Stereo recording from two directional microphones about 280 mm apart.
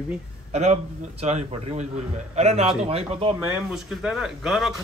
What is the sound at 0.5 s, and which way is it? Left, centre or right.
A man's voice, right.